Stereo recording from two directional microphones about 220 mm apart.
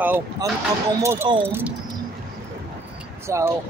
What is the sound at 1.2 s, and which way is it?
Speech, 20° right (ahead or behind).